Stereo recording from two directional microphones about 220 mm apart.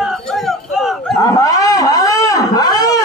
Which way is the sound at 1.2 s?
15° left (ahead or behind).